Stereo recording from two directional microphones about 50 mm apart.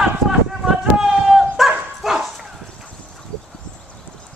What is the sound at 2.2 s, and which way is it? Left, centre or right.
Bow-wow, centre.